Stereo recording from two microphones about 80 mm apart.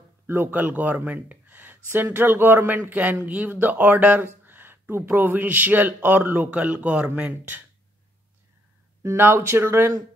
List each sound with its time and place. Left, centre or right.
0.3 s speech: right
9.0 s speech: right